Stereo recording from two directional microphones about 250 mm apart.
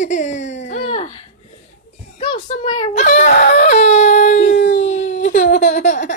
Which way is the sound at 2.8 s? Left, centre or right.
Left.